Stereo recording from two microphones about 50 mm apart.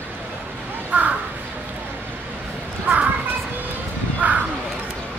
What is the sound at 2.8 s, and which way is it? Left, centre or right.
Children playing, right.